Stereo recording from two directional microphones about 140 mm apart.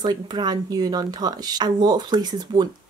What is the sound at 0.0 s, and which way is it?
Speech, 30° right (ahead or behind).